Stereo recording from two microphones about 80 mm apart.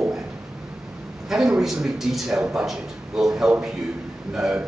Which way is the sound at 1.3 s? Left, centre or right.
Centre.